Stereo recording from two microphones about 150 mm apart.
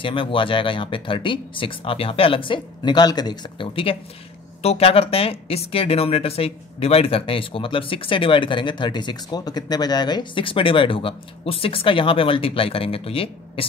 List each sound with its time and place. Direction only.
0.0 s speech: 35° left (ahead or behind)